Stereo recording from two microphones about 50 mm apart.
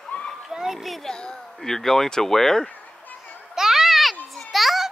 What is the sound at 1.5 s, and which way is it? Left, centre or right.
Speech, centre.